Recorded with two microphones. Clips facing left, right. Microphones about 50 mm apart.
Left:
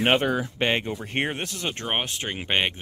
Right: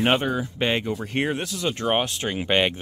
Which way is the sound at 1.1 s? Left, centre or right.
Left.